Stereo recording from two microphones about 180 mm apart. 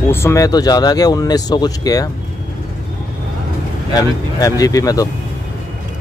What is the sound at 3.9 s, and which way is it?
A man's voice, 20° left (ahead or behind).